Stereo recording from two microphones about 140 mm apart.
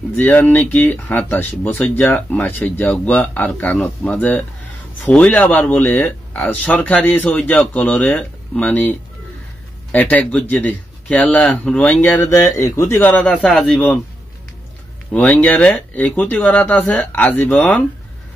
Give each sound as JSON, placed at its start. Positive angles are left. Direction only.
{"t": 0.2, "sound": "speech", "side_deg": 10}
{"t": 9.9, "sound": "speech", "side_deg": 10}
{"t": 15.1, "sound": "speech", "side_deg": 10}